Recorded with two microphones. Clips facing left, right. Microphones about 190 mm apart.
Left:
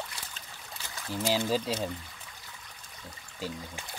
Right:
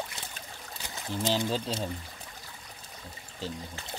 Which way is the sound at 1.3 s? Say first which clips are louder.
Left 4 dB; 5° left (ahead or behind).